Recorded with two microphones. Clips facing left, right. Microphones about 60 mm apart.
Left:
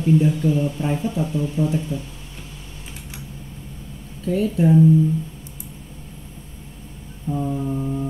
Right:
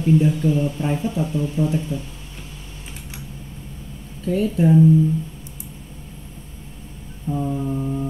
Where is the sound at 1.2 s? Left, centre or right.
Centre.